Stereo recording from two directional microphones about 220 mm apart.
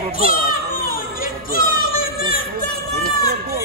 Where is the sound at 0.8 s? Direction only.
40° left (ahead or behind).